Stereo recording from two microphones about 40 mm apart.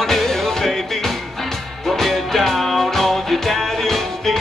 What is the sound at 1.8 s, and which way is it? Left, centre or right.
Music, centre.